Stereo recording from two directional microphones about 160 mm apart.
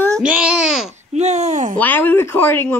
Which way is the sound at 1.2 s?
45° right (ahead or behind).